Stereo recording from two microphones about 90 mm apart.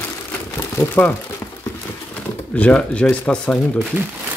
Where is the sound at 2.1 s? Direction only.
15° left (ahead or behind).